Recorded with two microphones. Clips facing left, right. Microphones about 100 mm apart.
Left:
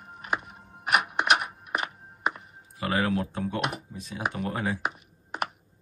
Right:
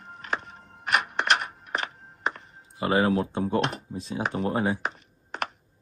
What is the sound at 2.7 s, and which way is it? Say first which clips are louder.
Speech: right 4 dB; 25° right (ahead or behind).